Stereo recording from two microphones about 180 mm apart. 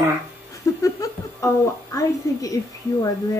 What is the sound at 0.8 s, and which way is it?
Laughter, 15° left (ahead or behind).